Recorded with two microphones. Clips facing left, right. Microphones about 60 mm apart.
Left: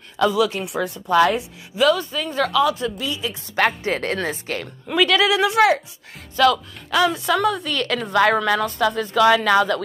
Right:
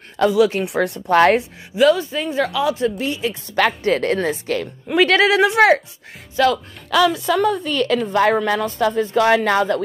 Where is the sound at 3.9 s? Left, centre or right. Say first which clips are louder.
Right 5 dB; left.